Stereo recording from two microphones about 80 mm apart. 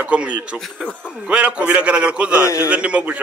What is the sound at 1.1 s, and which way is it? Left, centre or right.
A man's voice, centre.